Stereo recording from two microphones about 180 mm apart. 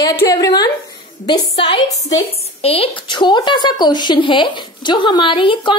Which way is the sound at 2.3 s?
35° left (ahead or behind).